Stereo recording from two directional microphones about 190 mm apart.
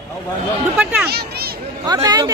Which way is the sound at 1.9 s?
20° right (ahead or behind).